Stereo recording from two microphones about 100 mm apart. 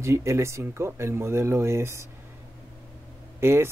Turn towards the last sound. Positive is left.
turn(degrees=-25)  # may be behind; listen again after turning